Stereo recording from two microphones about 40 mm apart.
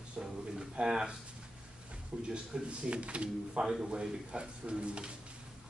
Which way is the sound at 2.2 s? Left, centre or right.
Right.